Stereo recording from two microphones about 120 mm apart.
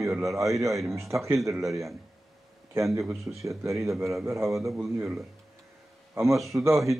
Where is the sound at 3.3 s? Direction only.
15° right (ahead or behind).